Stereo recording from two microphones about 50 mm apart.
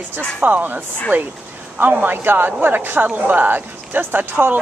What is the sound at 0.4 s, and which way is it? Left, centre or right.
A woman's voice, right.